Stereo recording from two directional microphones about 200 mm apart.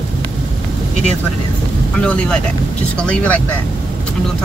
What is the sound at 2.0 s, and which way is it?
Speech, 5° left (ahead or behind).